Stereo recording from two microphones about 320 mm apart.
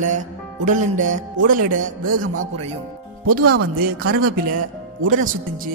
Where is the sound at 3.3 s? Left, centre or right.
Right.